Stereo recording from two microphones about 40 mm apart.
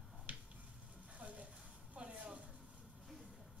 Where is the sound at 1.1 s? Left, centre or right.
Right.